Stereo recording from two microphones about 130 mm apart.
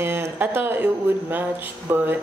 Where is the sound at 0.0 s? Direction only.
20° right (ahead or behind).